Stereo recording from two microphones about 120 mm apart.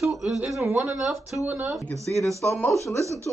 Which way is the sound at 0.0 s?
Centre (ahead or behind).